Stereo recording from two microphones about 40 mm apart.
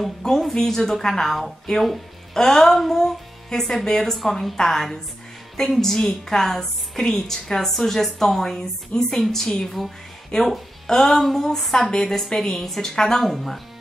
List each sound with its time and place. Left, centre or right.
0.2 s a woman's voice: centre
10.3 s a woman's voice: centre